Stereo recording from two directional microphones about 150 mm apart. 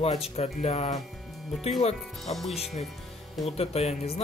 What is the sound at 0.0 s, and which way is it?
Speech, 45° left (ahead or behind).